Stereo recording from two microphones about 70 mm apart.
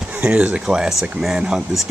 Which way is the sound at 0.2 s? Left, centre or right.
Centre.